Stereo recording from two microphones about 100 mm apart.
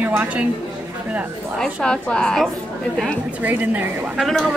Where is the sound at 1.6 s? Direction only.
5° left (ahead or behind).